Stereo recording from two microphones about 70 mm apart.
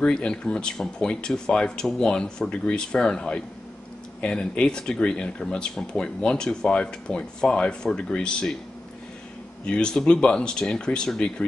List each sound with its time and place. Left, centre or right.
0.0 s speech: centre
9.7 s speech: centre